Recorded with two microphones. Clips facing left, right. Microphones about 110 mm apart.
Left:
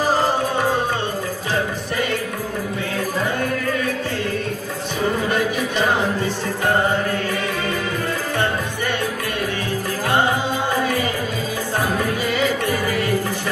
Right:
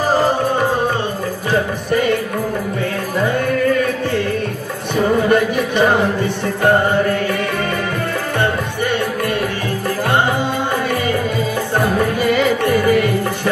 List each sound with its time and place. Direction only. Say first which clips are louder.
1.5 s music: right 7 dB; 50° right (ahead or behind)
4.9 s music: right 7 dB; 55° right (ahead or behind)
11.7 s music: right 4 dB; 55° right (ahead or behind)